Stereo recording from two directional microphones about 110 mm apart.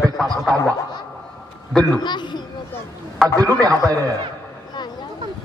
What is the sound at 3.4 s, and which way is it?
Speech, 30° right (ahead or behind).